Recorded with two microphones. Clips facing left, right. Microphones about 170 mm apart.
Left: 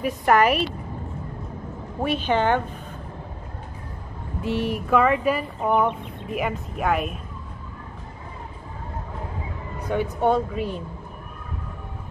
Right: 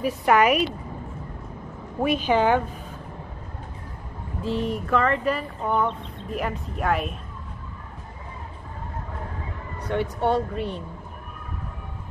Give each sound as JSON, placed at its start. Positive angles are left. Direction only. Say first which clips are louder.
{"t": 0.0, "sound": "speech", "louder": "left 1 dB", "side_deg": -5}
{"t": 0.4, "sound": "a woman's voice", "louder": "even", "side_deg": 35}
{"t": 2.0, "sound": "a woman's voice", "louder": "right 1 dB", "side_deg": -10}
{"t": 4.4, "sound": "speech", "louder": "left 1 dB", "side_deg": 75}
{"t": 4.8, "sound": "speech", "louder": "left 4 dB", "side_deg": 10}
{"t": 9.8, "sound": "speech", "louder": "left 2 dB", "side_deg": 5}